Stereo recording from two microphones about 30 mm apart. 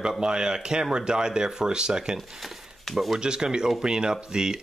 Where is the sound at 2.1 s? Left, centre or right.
Centre.